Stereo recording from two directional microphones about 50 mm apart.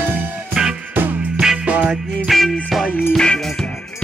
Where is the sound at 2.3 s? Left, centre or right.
Centre.